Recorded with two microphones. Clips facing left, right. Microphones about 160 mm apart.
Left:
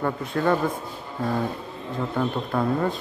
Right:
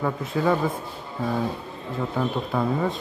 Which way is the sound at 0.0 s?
Centre (ahead or behind).